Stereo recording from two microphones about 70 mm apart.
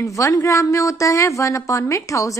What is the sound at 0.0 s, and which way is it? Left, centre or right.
Speech, left.